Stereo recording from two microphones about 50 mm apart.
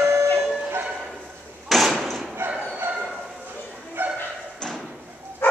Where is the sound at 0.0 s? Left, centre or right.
Right.